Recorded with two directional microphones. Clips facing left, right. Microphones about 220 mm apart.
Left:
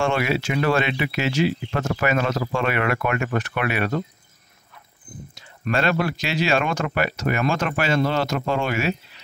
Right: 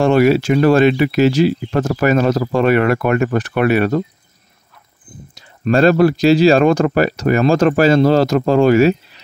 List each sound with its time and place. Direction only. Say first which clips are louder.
0.0 s speech: right 10 dB; 40° right (ahead or behind)
5.3 s speech: right 9 dB; 35° right (ahead or behind)